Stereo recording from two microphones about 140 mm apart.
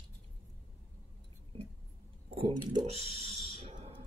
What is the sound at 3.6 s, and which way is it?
Fire alarm, 50° right (ahead or behind).